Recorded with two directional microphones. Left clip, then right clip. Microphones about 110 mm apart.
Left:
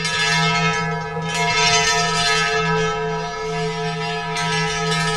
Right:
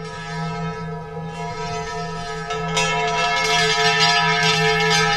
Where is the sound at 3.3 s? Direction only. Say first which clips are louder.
Right 6 dB; 25° right (ahead or behind).